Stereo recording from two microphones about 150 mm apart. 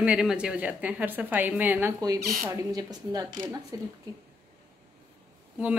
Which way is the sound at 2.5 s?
20° right (ahead or behind).